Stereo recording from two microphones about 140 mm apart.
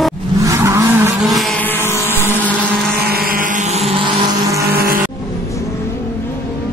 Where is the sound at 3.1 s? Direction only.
90° right.